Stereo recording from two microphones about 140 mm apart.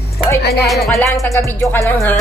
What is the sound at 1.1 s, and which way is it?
Music, 20° left (ahead or behind).